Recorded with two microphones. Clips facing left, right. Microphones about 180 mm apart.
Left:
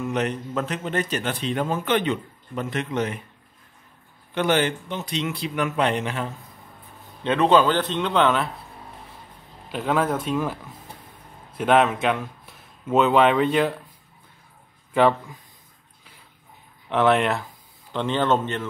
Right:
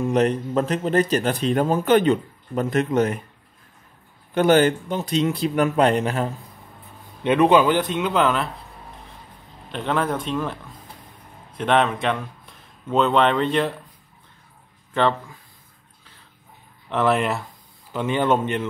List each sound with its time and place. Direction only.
0.0 s a man's voice: 35° right (ahead or behind)
4.3 s a man's voice: 45° right (ahead or behind)
7.2 s a man's voice: 15° right (ahead or behind)
9.7 s speech: 5° left (ahead or behind)
15.0 s speech: 10° left (ahead or behind)
16.9 s a man's voice: centre (ahead or behind)